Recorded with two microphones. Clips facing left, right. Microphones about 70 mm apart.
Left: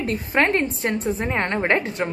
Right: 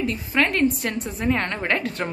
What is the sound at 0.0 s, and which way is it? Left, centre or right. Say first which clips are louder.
A woman's voice: left 2 dB; left.